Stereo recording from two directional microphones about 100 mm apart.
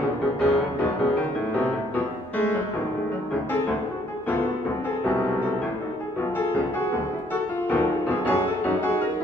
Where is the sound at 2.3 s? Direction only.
20° left (ahead or behind).